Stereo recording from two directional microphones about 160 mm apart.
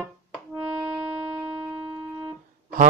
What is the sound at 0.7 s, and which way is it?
Shofar, 10° right (ahead or behind).